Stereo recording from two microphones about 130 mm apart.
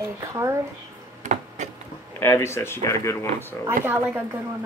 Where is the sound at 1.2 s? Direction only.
75° right (ahead or behind).